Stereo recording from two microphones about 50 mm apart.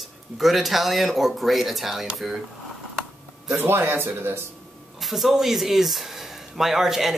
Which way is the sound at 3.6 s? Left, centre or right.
Right.